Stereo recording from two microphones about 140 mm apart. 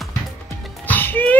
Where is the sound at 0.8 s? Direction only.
15° left (ahead or behind).